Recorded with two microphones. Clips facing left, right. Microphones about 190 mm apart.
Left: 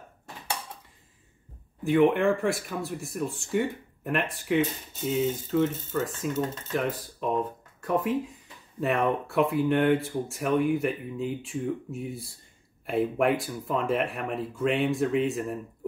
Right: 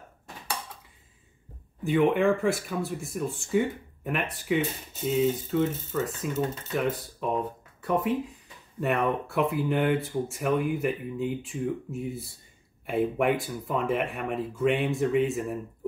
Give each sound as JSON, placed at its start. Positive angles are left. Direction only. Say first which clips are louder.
{"t": 1.9, "sound": "speech", "louder": "left 1 dB", "side_deg": 0}